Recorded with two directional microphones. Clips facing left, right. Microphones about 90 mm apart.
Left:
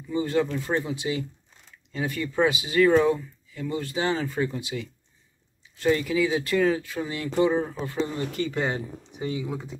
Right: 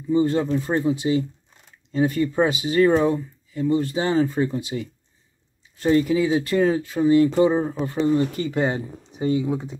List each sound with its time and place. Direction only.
0.1 s speech: 30° right (ahead or behind)